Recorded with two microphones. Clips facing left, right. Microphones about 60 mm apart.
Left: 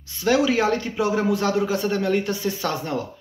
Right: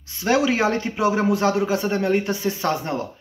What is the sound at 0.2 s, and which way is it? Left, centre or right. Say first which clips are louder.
Speech: even; right.